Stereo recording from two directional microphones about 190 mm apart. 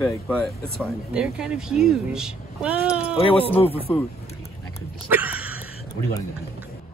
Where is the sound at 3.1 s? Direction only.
30° left (ahead or behind).